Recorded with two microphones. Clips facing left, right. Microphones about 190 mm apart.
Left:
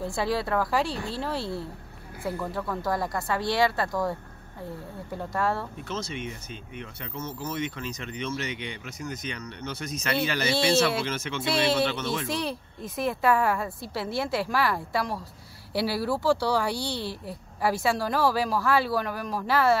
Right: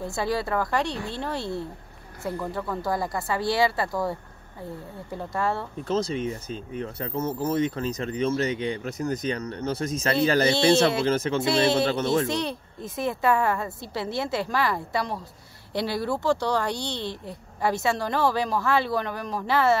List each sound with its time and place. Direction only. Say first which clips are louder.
0.1 s a woman's voice: right 1 dB; centre (ahead or behind)
5.9 s speech: right 11 dB; 35° right (ahead or behind)
10.7 s a woman's voice: right 2 dB; 5° left (ahead or behind)
11.1 s speech: right 7 dB; 35° right (ahead or behind)
12.3 s a woman's voice: right 2 dB; 5° left (ahead or behind)